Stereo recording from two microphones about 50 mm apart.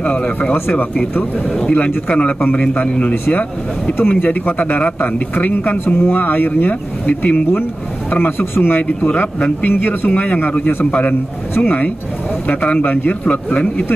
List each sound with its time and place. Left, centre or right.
0.0 s speech: left
1.7 s a man's voice: left
8.1 s a man's voice: left